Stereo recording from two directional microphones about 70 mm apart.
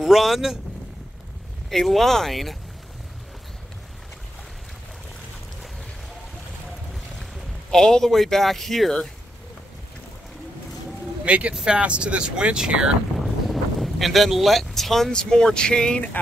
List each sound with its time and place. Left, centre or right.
0.0 s speech: centre
1.7 s speech: centre
6.9 s speech: centre
11.2 s speech: centre
13.2 s speech: centre